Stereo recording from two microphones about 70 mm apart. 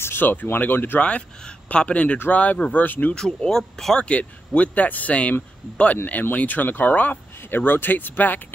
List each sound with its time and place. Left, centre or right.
0.0 s speech: left
1.7 s speech: centre
3.2 s speech: centre; by 8.5 s left